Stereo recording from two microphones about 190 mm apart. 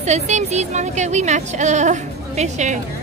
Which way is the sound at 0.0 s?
35° right (ahead or behind).